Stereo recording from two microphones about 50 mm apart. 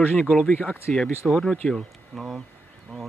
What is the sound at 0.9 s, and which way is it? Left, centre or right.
Speech, centre.